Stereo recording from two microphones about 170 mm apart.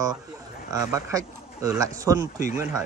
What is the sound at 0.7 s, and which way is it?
Speech, 20° right (ahead or behind).